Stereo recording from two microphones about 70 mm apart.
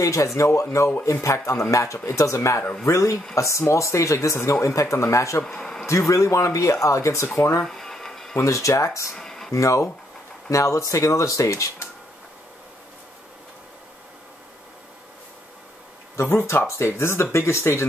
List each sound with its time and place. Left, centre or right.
0.0 s speech: left
5.4 s speech: centre
5.9 s speech: left
7.6 s music: centre
8.4 s speech: left
9.1 s a sound: centre
9.5 s speech: left
16.2 s speech: left